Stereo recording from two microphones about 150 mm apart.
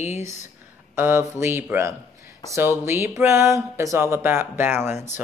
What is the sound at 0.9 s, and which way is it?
Speech, 15° right (ahead or behind).